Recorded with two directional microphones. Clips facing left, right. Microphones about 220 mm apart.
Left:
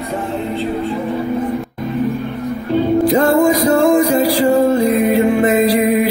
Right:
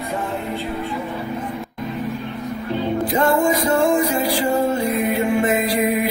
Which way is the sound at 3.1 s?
35° left (ahead or behind).